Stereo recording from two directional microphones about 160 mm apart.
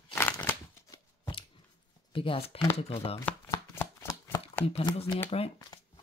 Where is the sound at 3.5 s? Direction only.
15° left (ahead or behind).